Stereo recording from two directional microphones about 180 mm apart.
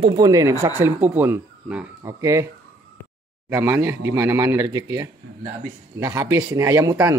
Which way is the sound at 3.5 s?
15° right (ahead or behind).